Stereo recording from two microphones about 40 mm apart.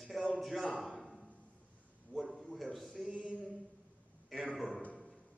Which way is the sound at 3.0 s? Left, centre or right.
Right.